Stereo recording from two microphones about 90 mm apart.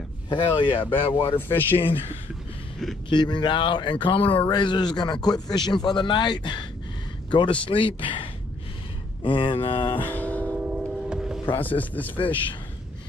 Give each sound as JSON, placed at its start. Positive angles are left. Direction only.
{"t": 0.3, "sound": "speech", "side_deg": 60}
{"t": 1.3, "sound": "a man's voice", "side_deg": 25}
{"t": 1.8, "sound": "speech", "side_deg": 85}
{"t": 3.1, "sound": "a man's voice", "side_deg": 60}
{"t": 4.5, "sound": "a man's voice", "side_deg": 55}
{"t": 7.6, "sound": "speech", "side_deg": 70}
{"t": 9.9, "sound": "a sound", "side_deg": 20}
{"t": 10.5, "sound": "vehicle", "side_deg": -15}
{"t": 11.6, "sound": "a man's voice", "side_deg": 20}